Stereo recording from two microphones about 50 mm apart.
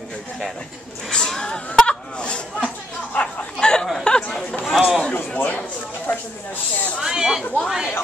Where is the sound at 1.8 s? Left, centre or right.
Left.